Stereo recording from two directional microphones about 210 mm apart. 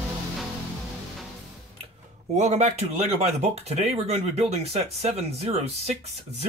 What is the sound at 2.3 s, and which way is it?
Speech, 35° right (ahead or behind).